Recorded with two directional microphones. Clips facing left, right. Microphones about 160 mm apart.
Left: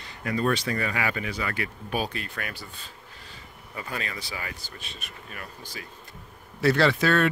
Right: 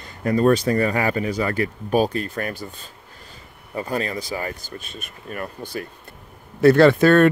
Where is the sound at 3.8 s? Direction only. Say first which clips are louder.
Right 10 dB; 40° right (ahead or behind).